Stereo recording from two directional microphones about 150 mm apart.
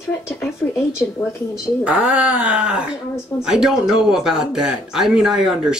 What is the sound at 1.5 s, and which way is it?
A woman's voice, 5° right (ahead or behind).